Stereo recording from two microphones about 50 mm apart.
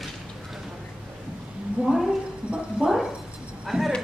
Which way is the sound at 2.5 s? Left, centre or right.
Centre.